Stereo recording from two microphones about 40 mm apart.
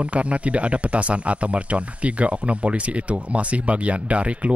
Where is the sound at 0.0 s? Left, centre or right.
Right.